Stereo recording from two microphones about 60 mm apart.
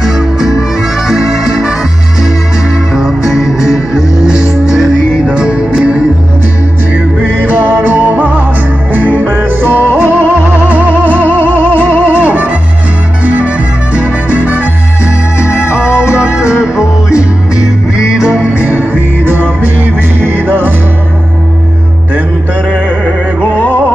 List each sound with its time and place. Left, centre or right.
0.0 s harmonica: centre
1.3 s music: centre; by 11.2 s right
11.2 s music: left
11.5 s music: right
15.0 s music: left
16.2 s music: centre
16.8 s music: left
18.1 s music: centre
18.6 s music: right
23.5 s music: left